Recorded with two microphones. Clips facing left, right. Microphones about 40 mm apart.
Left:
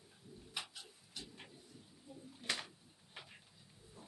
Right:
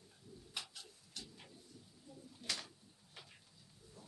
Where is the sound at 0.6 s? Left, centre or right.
Centre.